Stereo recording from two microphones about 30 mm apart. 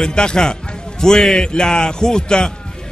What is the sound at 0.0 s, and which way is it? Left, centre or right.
Speech, left.